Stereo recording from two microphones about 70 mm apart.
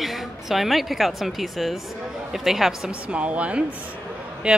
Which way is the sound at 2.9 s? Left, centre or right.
Centre.